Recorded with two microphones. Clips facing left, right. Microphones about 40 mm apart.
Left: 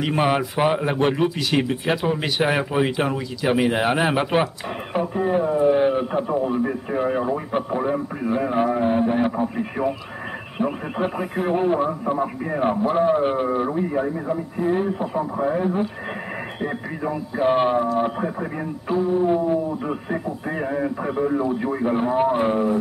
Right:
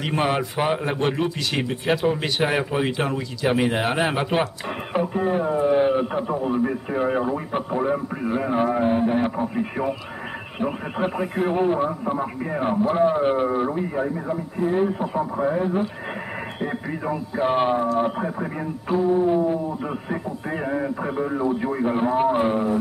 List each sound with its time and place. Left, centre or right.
0.0 s speech: centre